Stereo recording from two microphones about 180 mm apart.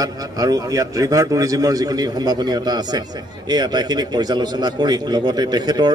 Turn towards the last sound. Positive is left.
turn(degrees=-25)  # may be behind; listen again after turning